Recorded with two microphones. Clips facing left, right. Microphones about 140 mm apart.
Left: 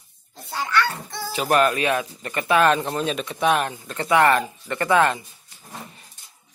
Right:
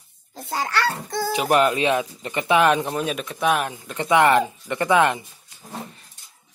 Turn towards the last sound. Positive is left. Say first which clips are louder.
# right 1 dB
turn(degrees=-15)  # may be behind; listen again after turning